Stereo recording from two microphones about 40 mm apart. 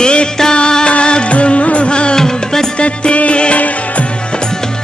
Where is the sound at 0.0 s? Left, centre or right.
Left.